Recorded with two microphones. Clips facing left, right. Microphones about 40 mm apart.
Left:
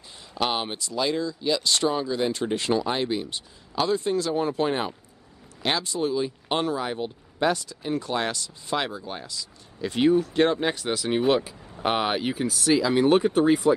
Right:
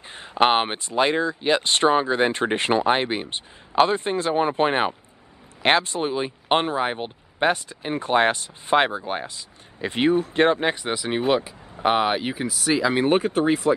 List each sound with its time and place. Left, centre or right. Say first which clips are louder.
0.1 s speech: right 8 dB; right; by 12.7 s centre
12.7 s speech: even; right
13.3 s speech: left 1 dB; centre